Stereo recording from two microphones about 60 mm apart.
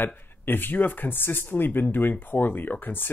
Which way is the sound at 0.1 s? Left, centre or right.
Left.